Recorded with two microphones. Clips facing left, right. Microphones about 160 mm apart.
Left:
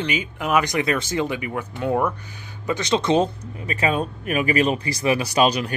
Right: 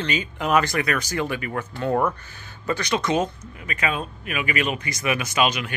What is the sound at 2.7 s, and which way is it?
A man's voice, 25° left (ahead or behind).